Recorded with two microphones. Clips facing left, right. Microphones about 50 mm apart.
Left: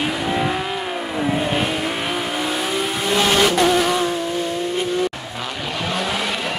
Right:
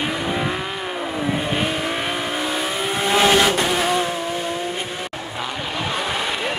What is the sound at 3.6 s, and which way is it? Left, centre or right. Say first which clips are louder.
Vehicle: left 3 dB; centre.